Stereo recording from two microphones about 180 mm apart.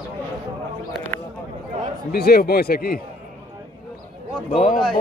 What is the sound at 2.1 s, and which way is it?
Speech, 60° left (ahead or behind).